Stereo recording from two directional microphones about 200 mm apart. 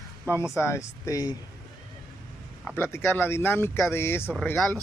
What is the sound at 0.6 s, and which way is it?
Speech, 15° left (ahead or behind).